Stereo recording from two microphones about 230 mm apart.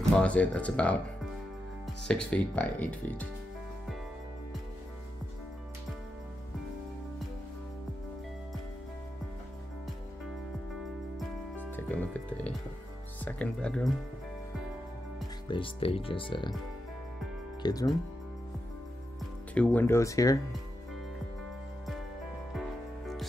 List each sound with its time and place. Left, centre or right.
0.1 s speech: centre
2.0 s speech: centre
11.1 s music: centre
15.4 s speech: left
17.6 s speech: centre
19.5 s speech: centre
22.5 s music: centre